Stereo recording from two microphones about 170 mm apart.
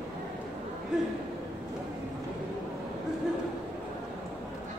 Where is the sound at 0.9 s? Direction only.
5° right (ahead or behind).